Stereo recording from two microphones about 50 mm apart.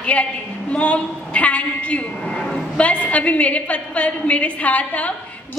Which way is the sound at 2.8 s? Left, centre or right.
Left.